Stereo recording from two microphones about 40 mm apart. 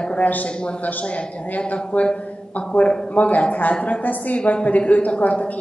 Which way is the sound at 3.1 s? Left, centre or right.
Left.